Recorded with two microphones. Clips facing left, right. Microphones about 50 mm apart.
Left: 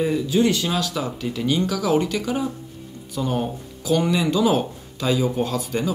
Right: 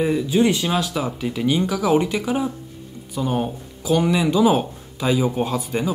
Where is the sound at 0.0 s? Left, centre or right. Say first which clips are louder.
Right 1 dB; centre.